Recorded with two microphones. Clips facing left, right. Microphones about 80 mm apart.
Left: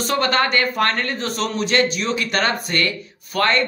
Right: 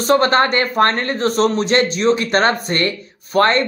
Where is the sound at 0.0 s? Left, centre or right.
Right.